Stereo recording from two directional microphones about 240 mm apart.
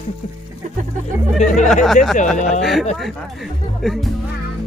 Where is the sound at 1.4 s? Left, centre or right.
Left.